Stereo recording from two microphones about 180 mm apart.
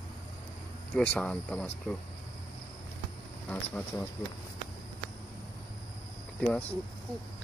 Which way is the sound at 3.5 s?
10° left (ahead or behind).